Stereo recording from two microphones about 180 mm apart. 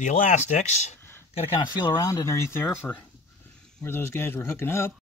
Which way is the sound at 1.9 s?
20° left (ahead or behind).